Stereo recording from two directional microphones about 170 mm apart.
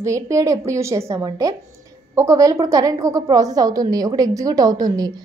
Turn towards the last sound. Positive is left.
turn(degrees=-20)  # may be behind; listen again after turning